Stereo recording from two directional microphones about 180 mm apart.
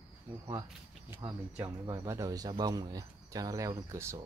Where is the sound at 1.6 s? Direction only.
15° right (ahead or behind).